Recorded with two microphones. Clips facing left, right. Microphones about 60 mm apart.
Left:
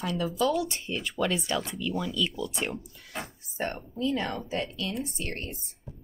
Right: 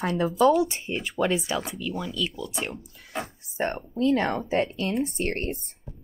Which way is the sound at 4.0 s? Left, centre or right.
Right.